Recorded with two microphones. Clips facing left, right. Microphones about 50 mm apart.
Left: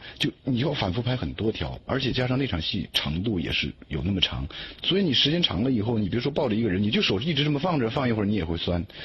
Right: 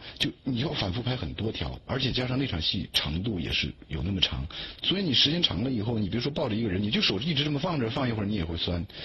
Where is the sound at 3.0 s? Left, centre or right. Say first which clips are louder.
Left 4 dB; centre.